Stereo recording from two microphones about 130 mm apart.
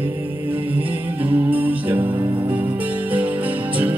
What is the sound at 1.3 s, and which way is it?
Music, 10° right (ahead or behind).